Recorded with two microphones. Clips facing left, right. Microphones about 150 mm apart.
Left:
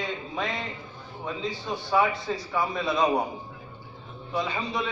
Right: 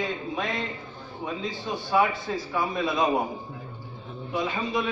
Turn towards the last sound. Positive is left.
turn(degrees=0)  # may be behind; listen again after turning